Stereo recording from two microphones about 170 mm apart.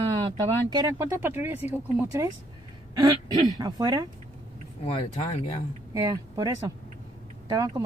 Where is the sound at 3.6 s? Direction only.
20° right (ahead or behind).